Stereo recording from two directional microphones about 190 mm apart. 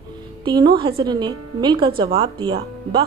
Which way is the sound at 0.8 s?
25° right (ahead or behind).